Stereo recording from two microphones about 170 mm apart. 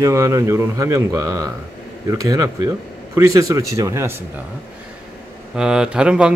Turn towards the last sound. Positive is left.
turn(degrees=-5)  # may be behind; listen again after turning